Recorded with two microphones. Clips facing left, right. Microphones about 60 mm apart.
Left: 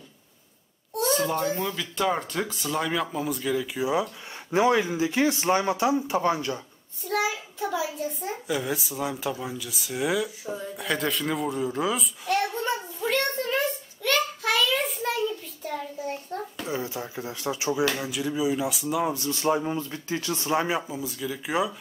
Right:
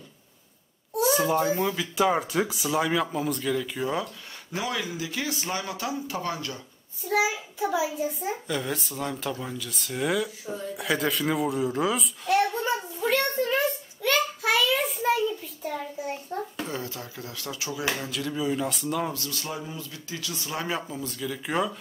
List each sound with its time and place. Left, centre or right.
0.9 s a child's voice: centre
4.5 s speech: left
7.0 s a child's voice: centre
8.5 s a child's voice: centre
13.0 s a sound: centre
16.6 s speech: centre
19.1 s speech: left
19.6 s speech: left
20.6 s a child's voice: centre